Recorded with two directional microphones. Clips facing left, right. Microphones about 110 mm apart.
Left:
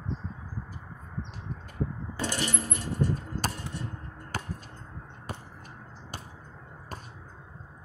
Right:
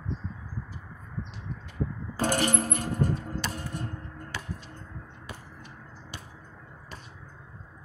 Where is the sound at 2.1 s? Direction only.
50° right (ahead or behind).